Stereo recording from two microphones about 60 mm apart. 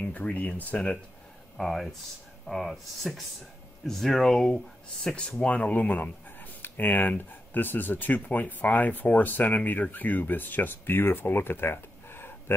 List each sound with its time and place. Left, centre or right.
0.0 s speech: left
1.6 s speech: centre
5.4 s speech: centre; by 12.5 s left